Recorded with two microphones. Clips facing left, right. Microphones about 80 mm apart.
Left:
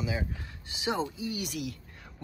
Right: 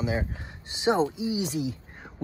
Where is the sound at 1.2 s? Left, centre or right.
Left.